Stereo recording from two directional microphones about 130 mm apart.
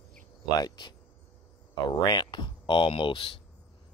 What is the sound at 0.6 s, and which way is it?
Speech, 35° left (ahead or behind).